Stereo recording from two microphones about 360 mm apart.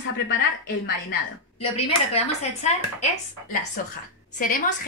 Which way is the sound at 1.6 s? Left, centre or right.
Centre.